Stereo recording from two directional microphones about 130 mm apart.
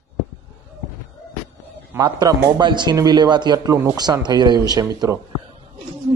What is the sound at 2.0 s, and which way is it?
A man's voice, 30° right (ahead or behind).